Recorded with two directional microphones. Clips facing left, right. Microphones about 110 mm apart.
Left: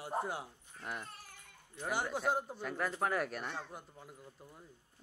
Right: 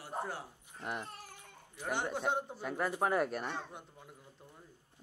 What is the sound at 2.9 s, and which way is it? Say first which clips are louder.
Speech: right 4 dB; 15° right (ahead or behind).